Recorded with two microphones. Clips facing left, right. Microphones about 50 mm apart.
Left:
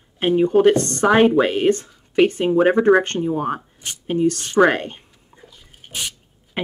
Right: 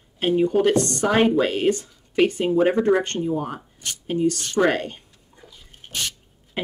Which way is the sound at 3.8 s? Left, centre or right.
Left.